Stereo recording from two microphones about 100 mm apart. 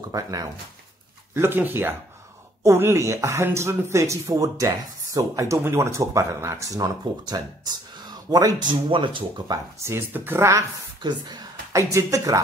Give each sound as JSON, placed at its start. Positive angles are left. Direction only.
{"t": 0.1, "sound": "speech", "side_deg": -35}
{"t": 1.3, "sound": "speech", "side_deg": -20}
{"t": 9.5, "sound": "speech", "side_deg": -30}
{"t": 11.0, "sound": "speech", "side_deg": -45}
{"t": 11.7, "sound": "speech", "side_deg": -35}